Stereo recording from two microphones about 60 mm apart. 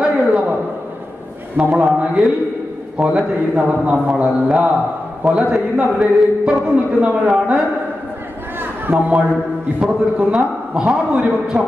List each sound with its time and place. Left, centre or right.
0.0 s a sound: centre
1.6 s a man's voice: right
3.0 s a man's voice: right
8.9 s a man's voice: right
9.8 s a man's voice: centre